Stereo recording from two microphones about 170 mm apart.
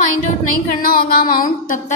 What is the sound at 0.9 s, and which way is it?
Speech, 55° left (ahead or behind).